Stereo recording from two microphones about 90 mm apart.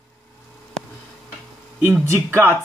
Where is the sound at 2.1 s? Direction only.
25° right (ahead or behind).